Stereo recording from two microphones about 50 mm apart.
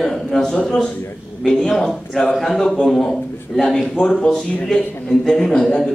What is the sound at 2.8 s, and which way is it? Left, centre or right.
Speech, centre.